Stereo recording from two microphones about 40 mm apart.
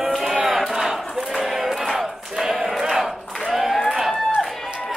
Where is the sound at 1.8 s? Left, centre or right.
Centre.